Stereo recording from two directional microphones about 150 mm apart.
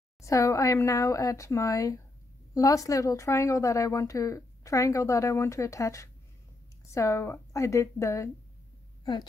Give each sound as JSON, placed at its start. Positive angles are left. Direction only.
{"t": 0.2, "sound": "speech", "side_deg": 20}